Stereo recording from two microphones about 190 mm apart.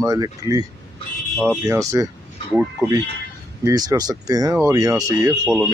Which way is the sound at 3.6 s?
20° right (ahead or behind).